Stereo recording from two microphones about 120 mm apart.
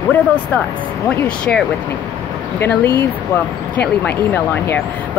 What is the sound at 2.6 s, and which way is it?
Speech, 15° left (ahead or behind).